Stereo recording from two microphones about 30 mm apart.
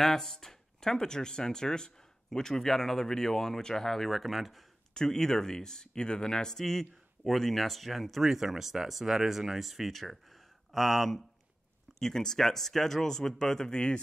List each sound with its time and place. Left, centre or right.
0.0 s speech: centre
4.9 s speech: left
6.5 s speech: centre
12.1 s speech: centre
13.7 s speech: left